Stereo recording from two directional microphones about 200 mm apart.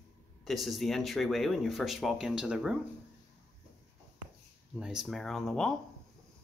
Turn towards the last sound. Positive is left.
turn(degrees=0)  # may be behind; listen again after turning